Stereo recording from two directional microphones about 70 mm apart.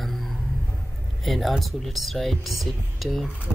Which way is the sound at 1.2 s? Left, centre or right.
Centre.